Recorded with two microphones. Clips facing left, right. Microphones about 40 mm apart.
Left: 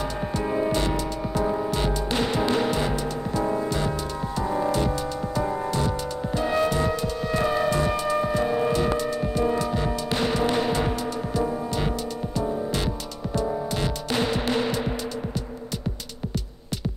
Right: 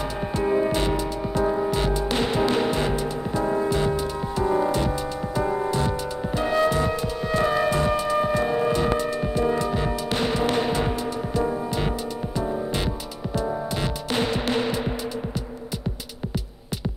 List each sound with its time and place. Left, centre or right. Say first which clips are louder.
0.5 s music: right 2 dB; centre
14.1 s music: right 1 dB; centre